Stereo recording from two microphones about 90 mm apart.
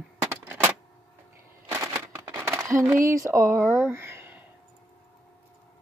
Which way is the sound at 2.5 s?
35° right (ahead or behind).